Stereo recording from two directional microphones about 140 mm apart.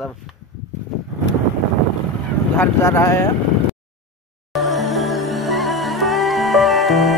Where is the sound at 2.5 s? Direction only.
20° left (ahead or behind).